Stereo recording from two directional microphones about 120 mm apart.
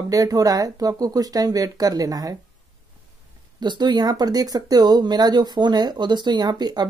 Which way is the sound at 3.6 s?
35° right (ahead or behind).